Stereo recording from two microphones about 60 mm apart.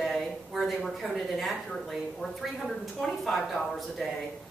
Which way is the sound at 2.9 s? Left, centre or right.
Centre.